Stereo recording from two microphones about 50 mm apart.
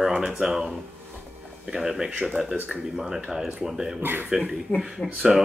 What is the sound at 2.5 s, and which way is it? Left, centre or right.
Speech, right.